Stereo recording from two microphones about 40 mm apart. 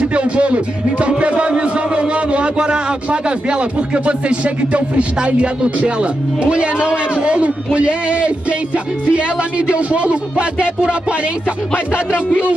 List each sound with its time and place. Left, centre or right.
0.0 s a man's voice: right